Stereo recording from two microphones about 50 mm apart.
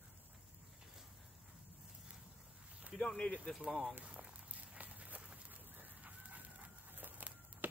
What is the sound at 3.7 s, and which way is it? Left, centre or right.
Speech, centre.